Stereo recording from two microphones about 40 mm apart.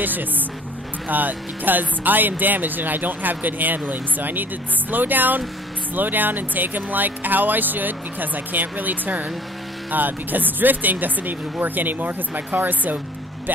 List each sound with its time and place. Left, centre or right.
0.0 s speech: right